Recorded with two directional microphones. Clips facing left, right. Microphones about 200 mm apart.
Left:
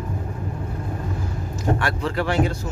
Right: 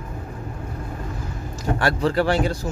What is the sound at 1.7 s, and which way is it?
Speech, 35° right (ahead or behind).